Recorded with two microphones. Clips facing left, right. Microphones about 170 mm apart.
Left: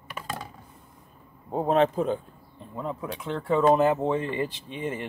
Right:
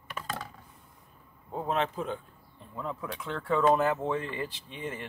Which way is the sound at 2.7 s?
20° left (ahead or behind).